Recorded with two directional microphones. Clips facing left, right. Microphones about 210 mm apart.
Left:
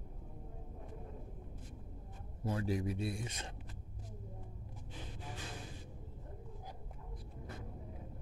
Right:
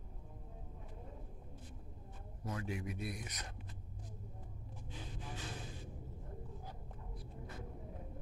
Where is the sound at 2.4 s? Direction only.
30° left (ahead or behind).